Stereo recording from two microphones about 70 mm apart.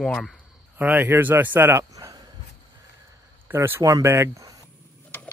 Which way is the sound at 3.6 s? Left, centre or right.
Right.